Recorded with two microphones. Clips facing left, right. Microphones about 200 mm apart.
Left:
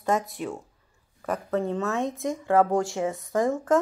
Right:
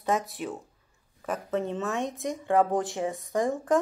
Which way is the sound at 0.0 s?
Centre (ahead or behind).